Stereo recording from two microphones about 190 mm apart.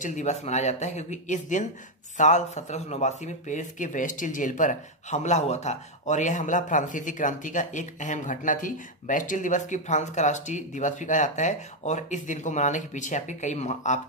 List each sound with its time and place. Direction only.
0.0 s speech: 40° left (ahead or behind)